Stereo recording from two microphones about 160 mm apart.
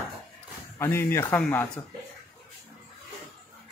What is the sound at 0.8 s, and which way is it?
Speech, 15° left (ahead or behind).